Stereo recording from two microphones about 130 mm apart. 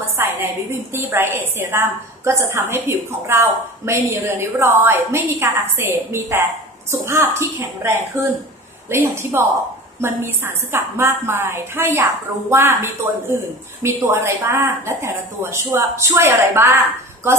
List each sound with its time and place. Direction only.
0.2 s a woman's voice: 15° right (ahead or behind)